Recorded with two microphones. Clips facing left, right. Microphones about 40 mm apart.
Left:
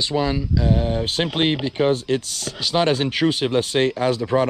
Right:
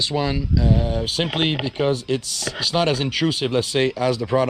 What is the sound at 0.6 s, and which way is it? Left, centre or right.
Speech, left.